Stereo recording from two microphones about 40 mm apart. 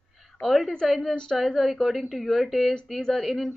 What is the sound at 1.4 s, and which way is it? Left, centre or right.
A woman's voice, centre.